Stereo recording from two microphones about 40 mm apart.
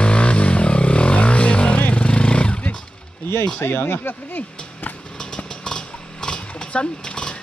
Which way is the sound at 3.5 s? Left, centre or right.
Left.